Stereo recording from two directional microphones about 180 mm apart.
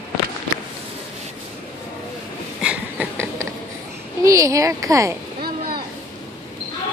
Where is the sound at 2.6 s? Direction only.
10° right (ahead or behind).